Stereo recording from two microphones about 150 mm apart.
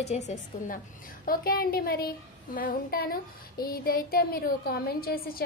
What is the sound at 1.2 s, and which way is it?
A woman's voice, 80° left.